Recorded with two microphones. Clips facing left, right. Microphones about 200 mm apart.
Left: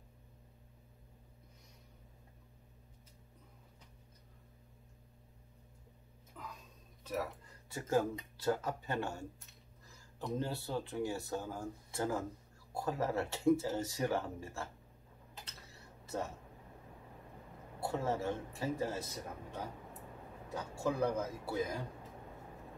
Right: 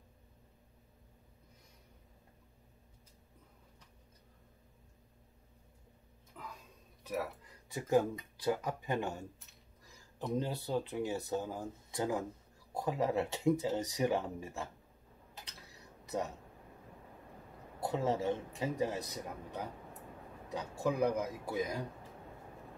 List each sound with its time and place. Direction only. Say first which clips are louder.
6.4 s a sound: even; 5° right (ahead or behind)
7.0 s speech: right 1 dB; 10° right (ahead or behind)
15.4 s tick-tock: even; 15° right (ahead or behind)
17.7 s speech: right 2 dB; 15° right (ahead or behind)